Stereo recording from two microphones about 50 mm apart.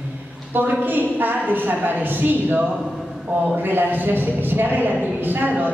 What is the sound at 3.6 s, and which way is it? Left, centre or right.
A man's voice, right.